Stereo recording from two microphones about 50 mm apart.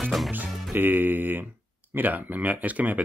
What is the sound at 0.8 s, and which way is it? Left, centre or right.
Music, right.